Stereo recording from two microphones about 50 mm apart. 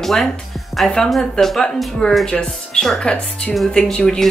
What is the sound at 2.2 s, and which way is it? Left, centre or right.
Speech, centre.